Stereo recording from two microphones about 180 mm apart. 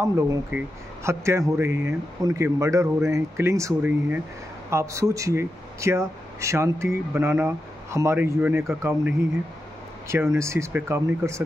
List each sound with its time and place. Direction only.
0.0 s speech: 15° right (ahead or behind)